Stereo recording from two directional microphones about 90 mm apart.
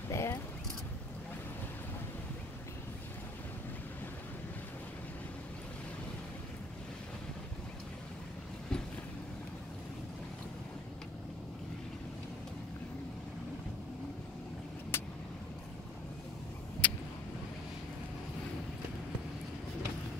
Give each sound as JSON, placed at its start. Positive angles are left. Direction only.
{"t": 0.1, "sound": "a sound", "side_deg": 35}
{"t": 14.9, "sound": "vehicle", "side_deg": 25}
{"t": 16.8, "sound": "vehicle", "side_deg": 15}